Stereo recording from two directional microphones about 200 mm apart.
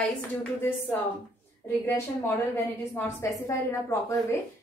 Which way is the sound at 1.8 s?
10° left (ahead or behind).